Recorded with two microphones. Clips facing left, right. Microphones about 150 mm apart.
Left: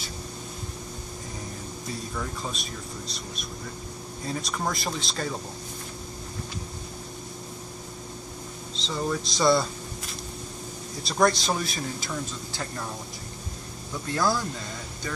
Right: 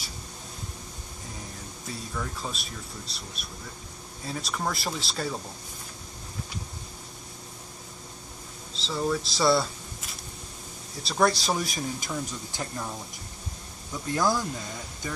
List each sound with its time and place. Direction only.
2.1 s speech: centre (ahead or behind)
4.3 s speech: 5° right (ahead or behind)
8.7 s speech: 5° right (ahead or behind)
11.0 s speech: 5° right (ahead or behind)
14.1 s speech: 15° right (ahead or behind)